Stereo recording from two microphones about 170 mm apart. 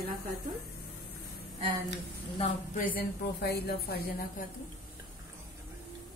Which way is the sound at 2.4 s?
55° left (ahead or behind).